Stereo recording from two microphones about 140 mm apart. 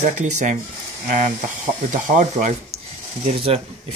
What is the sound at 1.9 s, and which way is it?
Speech, 60° right (ahead or behind).